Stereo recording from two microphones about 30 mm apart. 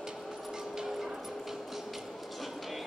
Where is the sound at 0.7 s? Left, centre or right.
Centre.